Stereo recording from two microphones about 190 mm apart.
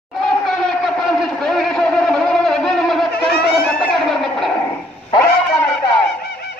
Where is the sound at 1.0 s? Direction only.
Centre (ahead or behind).